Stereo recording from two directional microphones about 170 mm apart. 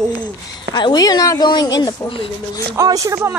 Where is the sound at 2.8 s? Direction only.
20° right (ahead or behind).